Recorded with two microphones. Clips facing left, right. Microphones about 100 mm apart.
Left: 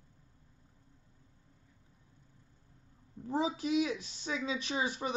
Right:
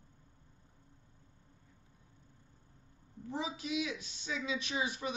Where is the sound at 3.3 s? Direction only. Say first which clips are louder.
Left 6 dB; 45° left (ahead or behind).